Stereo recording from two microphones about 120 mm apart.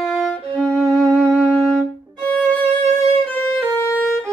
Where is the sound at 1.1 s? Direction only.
15° left (ahead or behind).